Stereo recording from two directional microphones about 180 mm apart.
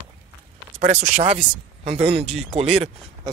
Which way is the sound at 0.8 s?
35° right (ahead or behind).